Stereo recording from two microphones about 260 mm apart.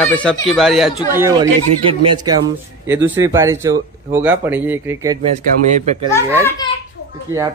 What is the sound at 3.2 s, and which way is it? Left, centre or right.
Speech, centre.